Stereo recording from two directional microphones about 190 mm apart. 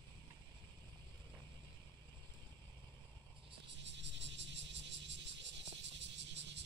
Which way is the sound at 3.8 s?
70° right (ahead or behind).